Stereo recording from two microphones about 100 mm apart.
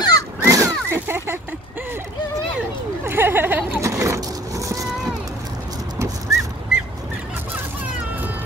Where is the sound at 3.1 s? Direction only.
20° right (ahead or behind).